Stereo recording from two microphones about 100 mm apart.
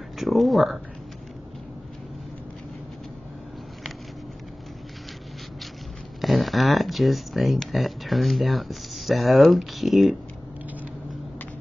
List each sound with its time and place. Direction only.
0.2 s speech: centre (ahead or behind)
6.2 s speech: centre (ahead or behind)